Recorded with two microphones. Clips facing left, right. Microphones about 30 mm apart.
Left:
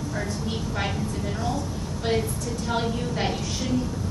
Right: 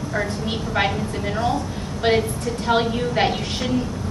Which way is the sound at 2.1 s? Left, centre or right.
Right.